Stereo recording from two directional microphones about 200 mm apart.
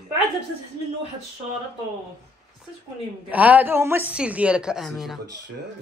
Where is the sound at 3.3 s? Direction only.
5° right (ahead or behind).